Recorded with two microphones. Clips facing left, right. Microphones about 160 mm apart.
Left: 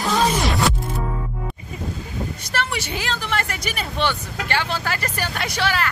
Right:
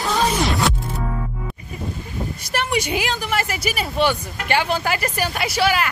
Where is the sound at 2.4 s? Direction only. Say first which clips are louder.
Right 6 dB; 15° right (ahead or behind).